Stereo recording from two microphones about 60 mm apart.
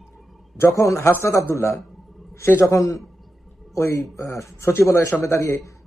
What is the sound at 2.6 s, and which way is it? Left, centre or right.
Speech, left.